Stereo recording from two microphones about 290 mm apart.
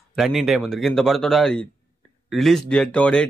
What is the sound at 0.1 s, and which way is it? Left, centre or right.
Speech, centre.